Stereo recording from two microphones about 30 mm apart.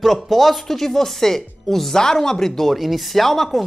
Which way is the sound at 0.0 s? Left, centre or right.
Centre.